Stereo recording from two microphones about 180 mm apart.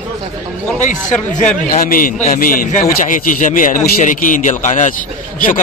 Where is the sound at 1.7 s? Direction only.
50° left (ahead or behind).